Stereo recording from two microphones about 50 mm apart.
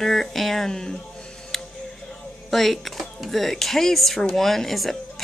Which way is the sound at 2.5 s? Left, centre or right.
Centre.